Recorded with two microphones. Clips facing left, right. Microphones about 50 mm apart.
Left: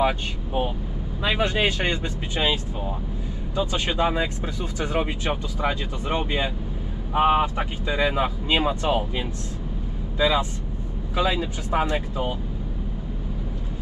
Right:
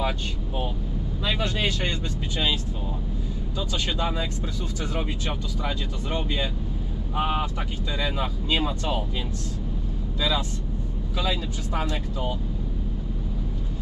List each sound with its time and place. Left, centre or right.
1.2 s speech: left
10.1 s speech: left